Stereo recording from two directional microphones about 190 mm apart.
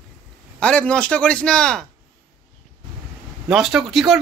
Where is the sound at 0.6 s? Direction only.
5° left (ahead or behind).